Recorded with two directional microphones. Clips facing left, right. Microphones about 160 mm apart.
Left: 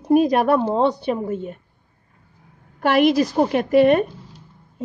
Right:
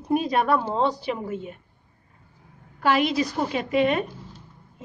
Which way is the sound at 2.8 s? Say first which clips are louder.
Left 6 dB; 50° left (ahead or behind).